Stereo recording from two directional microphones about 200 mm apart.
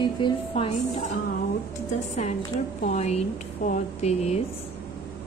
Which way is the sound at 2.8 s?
35° left (ahead or behind).